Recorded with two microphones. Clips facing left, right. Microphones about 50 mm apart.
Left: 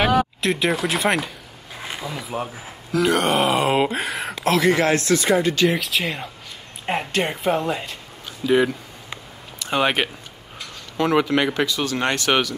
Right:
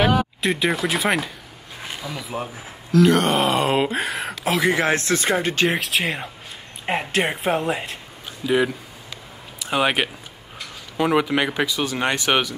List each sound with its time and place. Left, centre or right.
0.0 s speech: centre
4.8 s speech: right
6.9 s speech: centre
8.5 s speech: centre